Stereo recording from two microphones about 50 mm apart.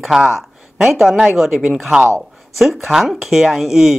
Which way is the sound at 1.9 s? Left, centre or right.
Centre.